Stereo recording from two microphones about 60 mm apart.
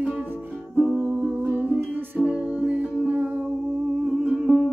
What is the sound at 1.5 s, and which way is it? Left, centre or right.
Music, right.